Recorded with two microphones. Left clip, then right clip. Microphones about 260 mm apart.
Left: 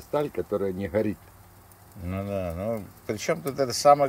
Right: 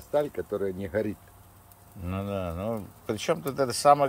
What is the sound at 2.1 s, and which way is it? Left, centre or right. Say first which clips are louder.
Speech: left 2 dB; centre.